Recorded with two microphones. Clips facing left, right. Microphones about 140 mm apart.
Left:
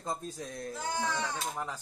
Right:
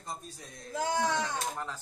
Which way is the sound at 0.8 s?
90° right.